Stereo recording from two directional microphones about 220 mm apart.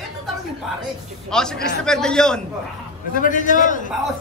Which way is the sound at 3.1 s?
35° left (ahead or behind).